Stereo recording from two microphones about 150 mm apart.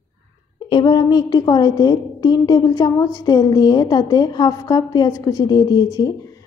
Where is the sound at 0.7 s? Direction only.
30° left (ahead or behind).